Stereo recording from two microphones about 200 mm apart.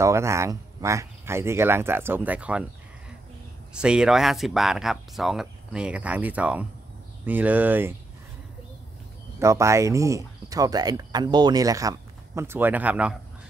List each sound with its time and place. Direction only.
0.0 s speech: 15° right (ahead or behind)
3.7 s speech: 5° right (ahead or behind)
9.4 s speech: 15° right (ahead or behind)